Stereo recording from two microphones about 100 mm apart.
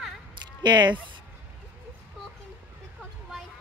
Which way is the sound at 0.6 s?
50° right (ahead or behind).